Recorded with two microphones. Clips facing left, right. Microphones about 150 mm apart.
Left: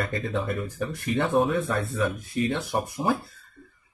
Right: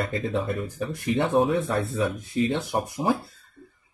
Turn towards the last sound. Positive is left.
turn(degrees=-15)  # may be behind; listen again after turning